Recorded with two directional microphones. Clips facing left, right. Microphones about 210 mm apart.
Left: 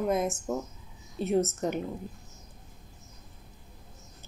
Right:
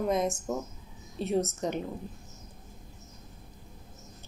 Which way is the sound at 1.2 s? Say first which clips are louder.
Left 2 dB; 30° right (ahead or behind).